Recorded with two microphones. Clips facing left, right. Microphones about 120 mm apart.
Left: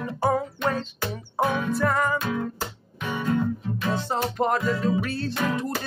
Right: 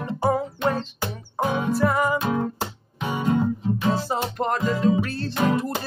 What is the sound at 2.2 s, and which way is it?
Music, 35° right (ahead or behind).